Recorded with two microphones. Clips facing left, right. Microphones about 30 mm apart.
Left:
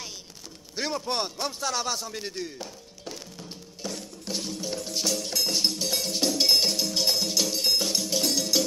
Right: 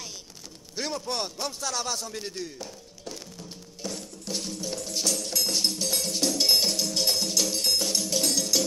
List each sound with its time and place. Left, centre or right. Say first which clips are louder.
0.7 s a man's voice: left 2 dB; centre
1.0 s chopping: left 2 dB; centre
3.8 s music: even; centre